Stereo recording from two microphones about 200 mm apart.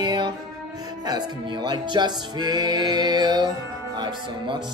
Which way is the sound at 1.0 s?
20° right (ahead or behind).